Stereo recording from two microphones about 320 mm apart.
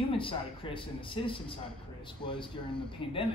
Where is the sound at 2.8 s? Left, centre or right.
Centre.